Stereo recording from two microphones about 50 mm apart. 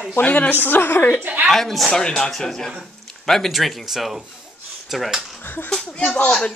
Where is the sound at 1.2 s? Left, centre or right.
Right.